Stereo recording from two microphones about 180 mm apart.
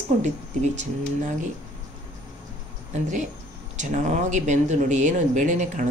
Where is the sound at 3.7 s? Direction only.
45° right (ahead or behind).